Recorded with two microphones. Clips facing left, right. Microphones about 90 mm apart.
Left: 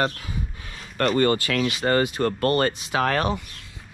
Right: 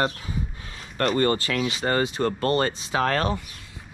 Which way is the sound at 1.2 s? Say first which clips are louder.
Left 2 dB; 25° right (ahead or behind).